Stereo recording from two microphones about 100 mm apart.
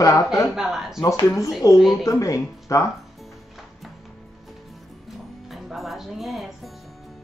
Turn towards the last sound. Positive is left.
turn(degrees=0)  # may be behind; listen again after turning